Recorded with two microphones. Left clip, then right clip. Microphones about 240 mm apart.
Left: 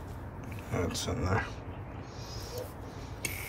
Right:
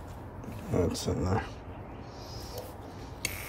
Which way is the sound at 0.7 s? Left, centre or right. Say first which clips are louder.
Right 4 dB; right.